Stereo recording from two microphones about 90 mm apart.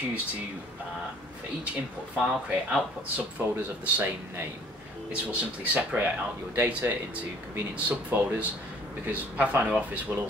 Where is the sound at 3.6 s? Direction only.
20° right (ahead or behind).